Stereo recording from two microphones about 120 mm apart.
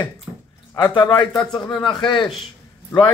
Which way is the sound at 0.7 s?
35° left (ahead or behind).